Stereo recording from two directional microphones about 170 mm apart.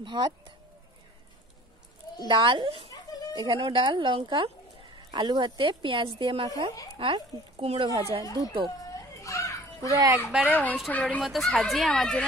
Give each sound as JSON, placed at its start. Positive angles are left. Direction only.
{"t": 0.0, "sound": "a child's voice", "side_deg": -25}
{"t": 2.2, "sound": "a child's voice", "side_deg": -30}
{"t": 9.2, "sound": "children playing", "side_deg": 20}
{"t": 9.9, "sound": "a child's voice", "side_deg": -20}
{"t": 10.5, "sound": "speech", "side_deg": 10}